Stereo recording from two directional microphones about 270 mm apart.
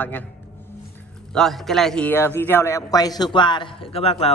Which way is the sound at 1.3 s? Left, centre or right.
Centre.